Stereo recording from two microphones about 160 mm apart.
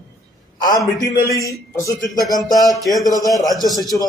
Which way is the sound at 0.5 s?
25° left (ahead or behind).